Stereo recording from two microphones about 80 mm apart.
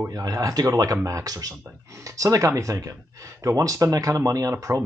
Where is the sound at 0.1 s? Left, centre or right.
Right.